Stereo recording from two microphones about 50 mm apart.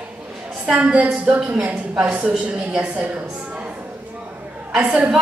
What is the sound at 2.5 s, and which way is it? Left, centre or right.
Speech, right.